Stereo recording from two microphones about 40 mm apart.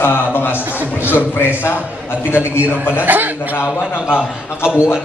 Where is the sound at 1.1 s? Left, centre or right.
Left.